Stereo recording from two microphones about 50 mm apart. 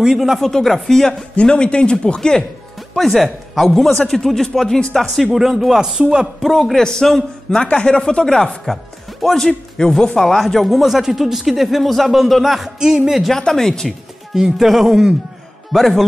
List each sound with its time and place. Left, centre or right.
0.0 s a man's voice: centre
0.5 s speech: centre
1.3 s speech: left
3.0 s a man's voice: centre
6.7 s speech: centre
7.6 s speech: left
8.7 s a man's voice: centre
13.4 s speech: centre
14.3 s a man's voice: centre